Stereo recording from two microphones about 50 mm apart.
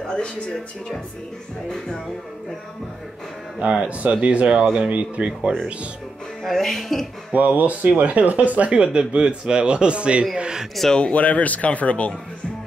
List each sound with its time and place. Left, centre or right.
0.1 s speech: centre
3.6 s speech: right
6.4 s speech: centre
7.3 s speech: right
11.0 s speech: left